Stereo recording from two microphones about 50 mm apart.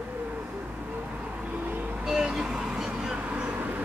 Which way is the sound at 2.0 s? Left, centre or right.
Centre.